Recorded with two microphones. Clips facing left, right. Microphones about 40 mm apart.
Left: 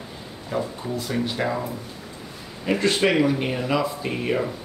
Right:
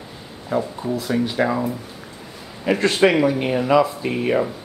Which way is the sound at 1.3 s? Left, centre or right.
Centre.